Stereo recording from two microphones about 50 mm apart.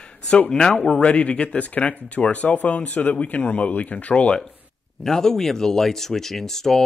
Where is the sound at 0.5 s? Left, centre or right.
Centre.